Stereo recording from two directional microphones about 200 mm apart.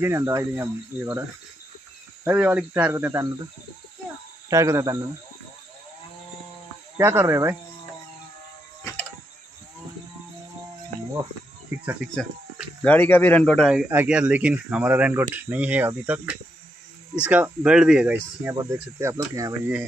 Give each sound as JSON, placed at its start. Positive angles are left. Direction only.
{"t": 0.0, "sound": "speech", "side_deg": -15}
{"t": 2.2, "sound": "speech", "side_deg": -10}
{"t": 4.5, "sound": "speech", "side_deg": -15}
{"t": 7.0, "sound": "speech", "side_deg": -10}
{"t": 12.2, "sound": "speech", "side_deg": 5}